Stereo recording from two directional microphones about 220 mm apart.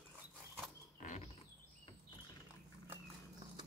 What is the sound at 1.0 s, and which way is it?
Bird, 35° left (ahead or behind).